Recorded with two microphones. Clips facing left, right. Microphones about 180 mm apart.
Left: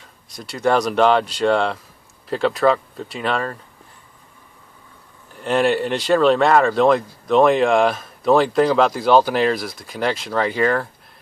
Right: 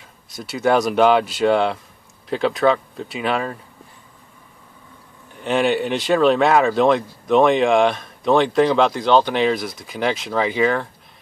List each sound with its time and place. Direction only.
0.3 s speech: centre (ahead or behind)
5.3 s speech: centre (ahead or behind)